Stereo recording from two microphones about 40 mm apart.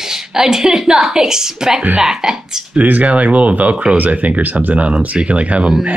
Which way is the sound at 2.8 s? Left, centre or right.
Right.